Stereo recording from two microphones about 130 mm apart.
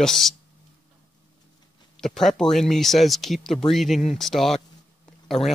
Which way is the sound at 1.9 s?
5° left (ahead or behind).